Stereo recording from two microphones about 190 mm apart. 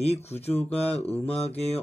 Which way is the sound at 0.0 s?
35° left (ahead or behind).